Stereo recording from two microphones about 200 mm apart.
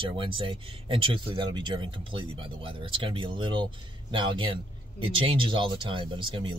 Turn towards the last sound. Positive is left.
turn(degrees=-25)  # may be behind; listen again after turning